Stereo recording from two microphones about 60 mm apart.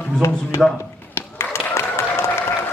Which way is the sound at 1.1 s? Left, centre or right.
Left.